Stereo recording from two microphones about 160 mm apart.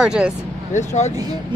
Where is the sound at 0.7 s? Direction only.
45° left (ahead or behind).